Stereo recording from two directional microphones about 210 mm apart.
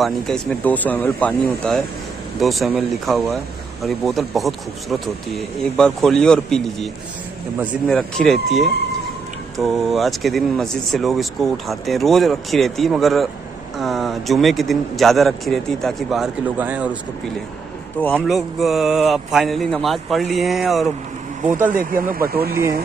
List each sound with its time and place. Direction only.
0.0 s speech: 5° left (ahead or behind)
18.1 s speech: centre (ahead or behind)
21.7 s speech: 40° right (ahead or behind)